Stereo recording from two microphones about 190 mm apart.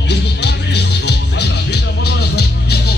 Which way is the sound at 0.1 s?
60° left (ahead or behind).